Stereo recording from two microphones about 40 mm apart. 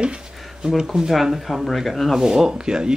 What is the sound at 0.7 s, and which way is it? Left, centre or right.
Speech, centre.